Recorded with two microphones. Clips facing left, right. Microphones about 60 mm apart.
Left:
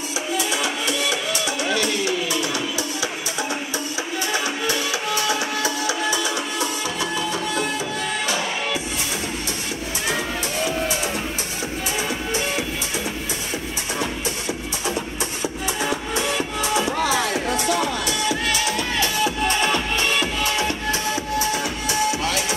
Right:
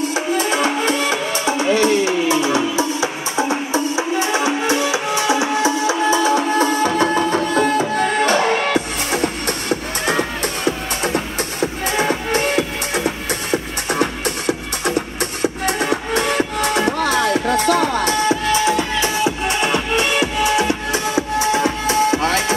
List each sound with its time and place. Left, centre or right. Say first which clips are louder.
0.1 s music: right 6 dB; right; by 20.7 s centre
21.5 s music: right 7 dB; right